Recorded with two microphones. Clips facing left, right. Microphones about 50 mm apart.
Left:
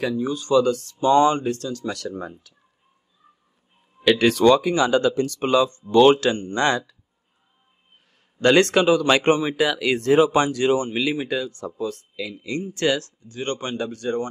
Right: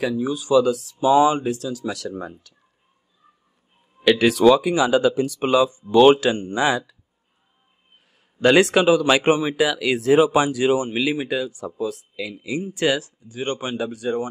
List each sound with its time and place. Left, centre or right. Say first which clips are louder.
0.0 s speech: right 1 dB; centre
4.0 s speech: right 1 dB; centre
8.4 s speech: right 1 dB; centre